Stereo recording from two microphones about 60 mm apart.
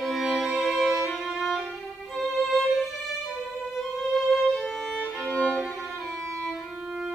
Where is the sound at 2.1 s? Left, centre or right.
Centre.